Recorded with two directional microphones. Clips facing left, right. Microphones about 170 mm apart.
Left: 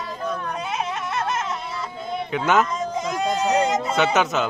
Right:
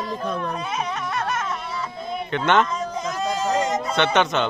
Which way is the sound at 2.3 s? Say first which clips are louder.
Even; 5° left (ahead or behind).